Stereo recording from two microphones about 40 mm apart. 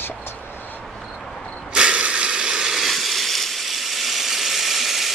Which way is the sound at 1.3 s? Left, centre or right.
Left.